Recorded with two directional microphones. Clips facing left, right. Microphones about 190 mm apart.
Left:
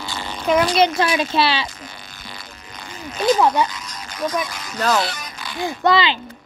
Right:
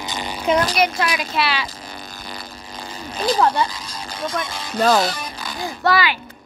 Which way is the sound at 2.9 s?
35° right (ahead or behind).